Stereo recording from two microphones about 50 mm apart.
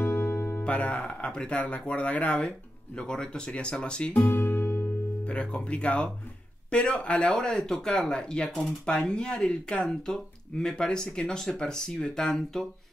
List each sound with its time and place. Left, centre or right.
0.0 s music: left
0.7 s speech: left
4.3 s music: left
5.2 s speech: left